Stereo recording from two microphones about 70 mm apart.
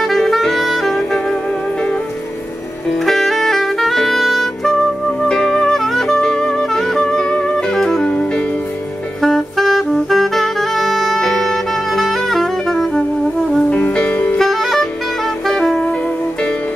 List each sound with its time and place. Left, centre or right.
0.0 s saxophone: centre
2.9 s saxophone: centre
5.3 s music: centre
9.2 s saxophone: centre
13.7 s music: left
14.4 s music: centre
15.4 s saxophone: centre